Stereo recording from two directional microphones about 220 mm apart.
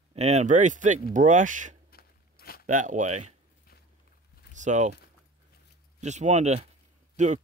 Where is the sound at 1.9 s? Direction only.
45° left (ahead or behind).